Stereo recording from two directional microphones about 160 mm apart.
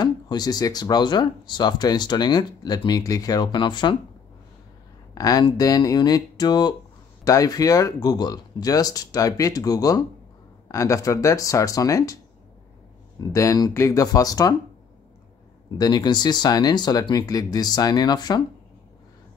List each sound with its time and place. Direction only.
0.0 s speech: 25° left (ahead or behind)
5.1 s speech: 25° left (ahead or behind)
13.3 s speech: 20° left (ahead or behind)
15.8 s speech: 25° left (ahead or behind)